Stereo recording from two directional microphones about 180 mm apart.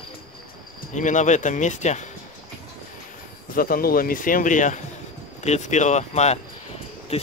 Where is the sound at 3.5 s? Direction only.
55° left (ahead or behind).